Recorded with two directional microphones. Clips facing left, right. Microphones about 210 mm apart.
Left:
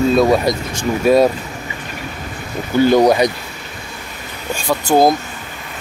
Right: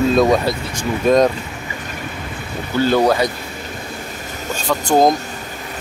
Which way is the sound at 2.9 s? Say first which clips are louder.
Left 2 dB; 15° left (ahead or behind).